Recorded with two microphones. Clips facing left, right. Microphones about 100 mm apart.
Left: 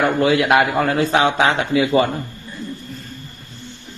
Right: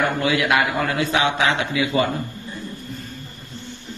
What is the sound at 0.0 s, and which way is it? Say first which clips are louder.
A man's voice: left 4 dB; 35° left (ahead or behind).